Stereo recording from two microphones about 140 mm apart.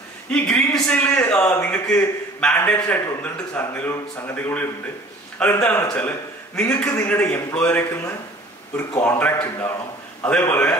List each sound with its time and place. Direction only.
0.3 s a man's voice: 5° left (ahead or behind)